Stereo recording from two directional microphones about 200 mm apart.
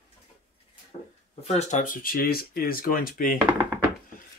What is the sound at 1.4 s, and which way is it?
Speech, 35° left (ahead or behind).